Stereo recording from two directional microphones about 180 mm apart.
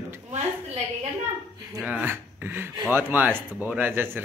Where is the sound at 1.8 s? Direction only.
10° right (ahead or behind).